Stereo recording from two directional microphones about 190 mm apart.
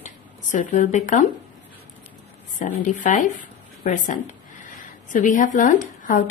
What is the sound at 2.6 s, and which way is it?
A woman's voice, 40° left (ahead or behind).